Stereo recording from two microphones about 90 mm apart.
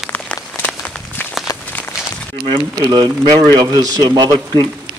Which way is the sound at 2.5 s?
65° right (ahead or behind).